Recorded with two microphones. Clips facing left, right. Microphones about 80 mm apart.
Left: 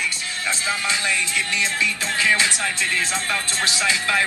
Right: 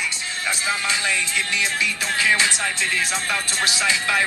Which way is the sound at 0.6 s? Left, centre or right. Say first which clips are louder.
Even; right.